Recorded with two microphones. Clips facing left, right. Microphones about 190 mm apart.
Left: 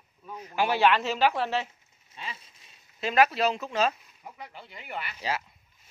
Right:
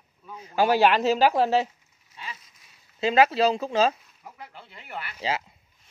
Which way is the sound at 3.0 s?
30° right (ahead or behind).